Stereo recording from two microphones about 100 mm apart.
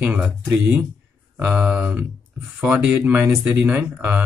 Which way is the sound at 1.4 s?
15° right (ahead or behind).